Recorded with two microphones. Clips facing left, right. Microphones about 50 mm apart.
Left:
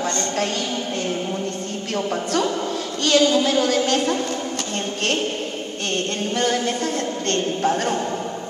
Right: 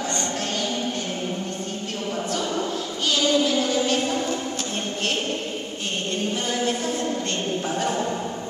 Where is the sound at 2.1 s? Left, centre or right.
Left.